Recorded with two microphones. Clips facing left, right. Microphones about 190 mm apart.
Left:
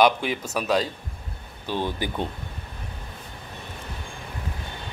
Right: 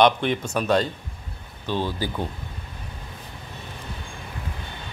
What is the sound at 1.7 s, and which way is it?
Speech, 15° left (ahead or behind).